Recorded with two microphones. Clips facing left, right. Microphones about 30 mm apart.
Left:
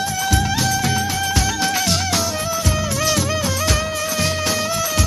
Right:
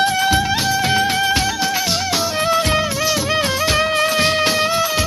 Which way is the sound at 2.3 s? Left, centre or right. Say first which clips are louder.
Right 6 dB; right.